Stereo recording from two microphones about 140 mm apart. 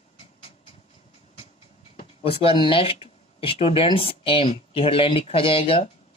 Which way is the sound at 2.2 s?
40° left (ahead or behind).